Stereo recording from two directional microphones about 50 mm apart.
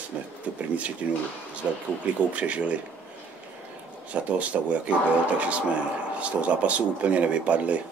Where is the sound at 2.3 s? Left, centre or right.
Right.